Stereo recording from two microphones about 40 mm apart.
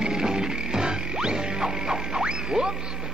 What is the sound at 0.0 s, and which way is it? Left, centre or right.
Music, centre.